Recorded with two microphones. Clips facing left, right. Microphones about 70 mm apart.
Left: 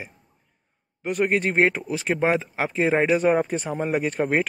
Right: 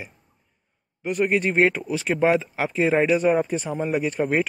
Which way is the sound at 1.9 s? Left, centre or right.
Left.